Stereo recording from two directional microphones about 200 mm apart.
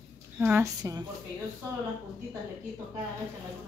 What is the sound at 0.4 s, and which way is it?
Speech, 10° right (ahead or behind).